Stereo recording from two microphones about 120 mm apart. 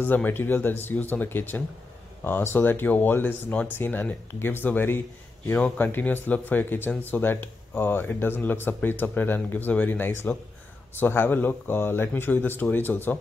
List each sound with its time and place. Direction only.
0.0 s speech: 15° left (ahead or behind)